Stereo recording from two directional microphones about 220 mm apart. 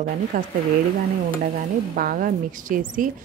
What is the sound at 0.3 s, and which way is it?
Speech, 40° right (ahead or behind).